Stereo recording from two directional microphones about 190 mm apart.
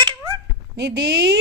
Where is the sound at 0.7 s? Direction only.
60° right (ahead or behind).